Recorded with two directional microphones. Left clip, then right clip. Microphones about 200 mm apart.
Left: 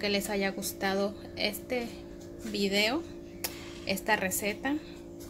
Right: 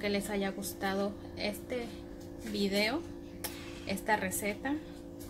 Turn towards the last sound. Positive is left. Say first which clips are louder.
# left 3 dB
turn(degrees=20)  # may be behind; listen again after turning